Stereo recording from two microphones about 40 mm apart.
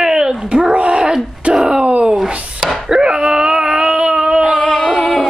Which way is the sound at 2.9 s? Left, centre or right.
Right.